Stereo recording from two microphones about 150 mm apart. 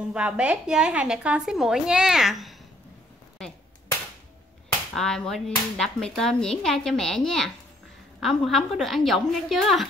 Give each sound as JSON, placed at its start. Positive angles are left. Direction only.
{"t": 0.1, "sound": "speech", "side_deg": -10}
{"t": 4.9, "sound": "speech", "side_deg": 5}